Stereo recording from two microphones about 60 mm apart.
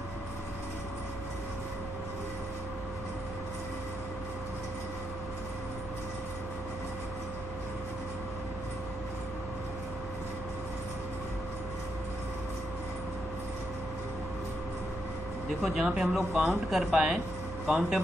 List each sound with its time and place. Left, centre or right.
15.6 s speech: centre